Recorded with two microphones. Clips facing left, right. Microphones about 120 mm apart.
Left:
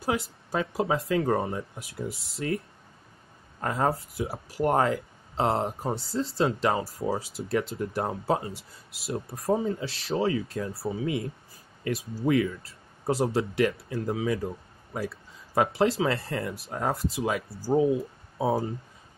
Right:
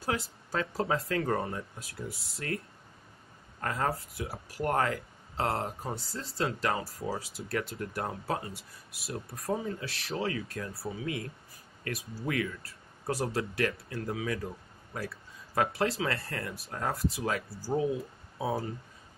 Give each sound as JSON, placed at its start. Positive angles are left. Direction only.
{"t": 0.5, "sound": "speech", "side_deg": 15}
{"t": 3.6, "sound": "speech", "side_deg": 20}